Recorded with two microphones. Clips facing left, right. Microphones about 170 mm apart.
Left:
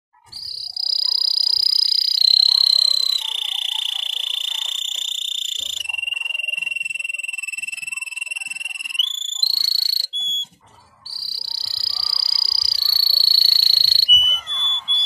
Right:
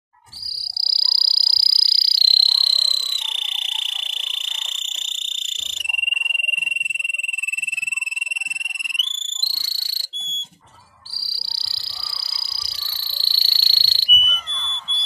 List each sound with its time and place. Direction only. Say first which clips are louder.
0.7 s frog: right 2 dB; 50° left (ahead or behind)
9.4 s cricket: left 3 dB; 35° left (ahead or behind)
12.1 s frog: left 1 dB; 30° left (ahead or behind)
13.3 s whistle: left 1 dB; 45° left (ahead or behind)
14.1 s smoke detector: right 1 dB; centre (ahead or behind)